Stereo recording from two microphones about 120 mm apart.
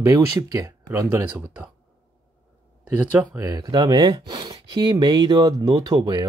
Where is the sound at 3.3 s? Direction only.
30° right (ahead or behind).